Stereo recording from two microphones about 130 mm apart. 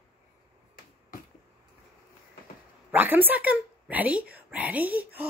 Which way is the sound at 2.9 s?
15° right (ahead or behind).